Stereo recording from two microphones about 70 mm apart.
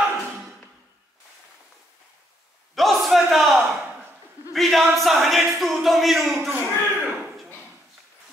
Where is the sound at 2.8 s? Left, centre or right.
Centre.